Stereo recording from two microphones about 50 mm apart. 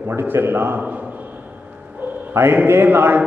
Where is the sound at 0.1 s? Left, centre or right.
Right.